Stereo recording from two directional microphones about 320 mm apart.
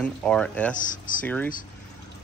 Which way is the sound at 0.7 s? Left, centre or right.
Left.